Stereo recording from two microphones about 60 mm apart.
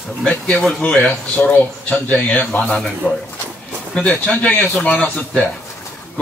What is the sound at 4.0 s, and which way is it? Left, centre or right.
Speech, centre.